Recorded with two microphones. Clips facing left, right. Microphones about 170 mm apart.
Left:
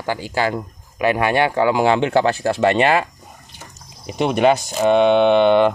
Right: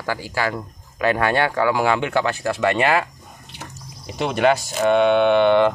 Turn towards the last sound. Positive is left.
turn(degrees=20)  # may be behind; listen again after turning